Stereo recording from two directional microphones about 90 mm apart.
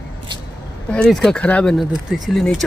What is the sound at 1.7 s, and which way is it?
Speech, centre (ahead or behind).